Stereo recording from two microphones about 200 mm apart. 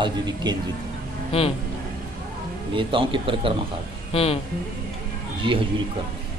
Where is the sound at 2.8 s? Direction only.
25° right (ahead or behind).